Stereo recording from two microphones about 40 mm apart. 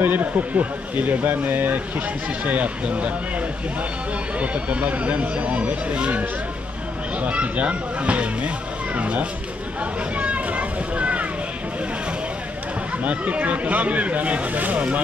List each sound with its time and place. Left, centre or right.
0.0 s speech: right
2.4 s speech: right
9.8 s a sound: right
13.0 s speech: right